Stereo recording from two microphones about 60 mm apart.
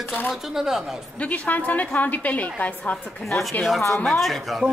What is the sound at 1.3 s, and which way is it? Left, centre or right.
A woman's voice, left.